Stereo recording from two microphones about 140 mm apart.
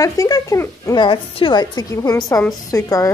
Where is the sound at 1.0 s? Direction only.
35° left (ahead or behind).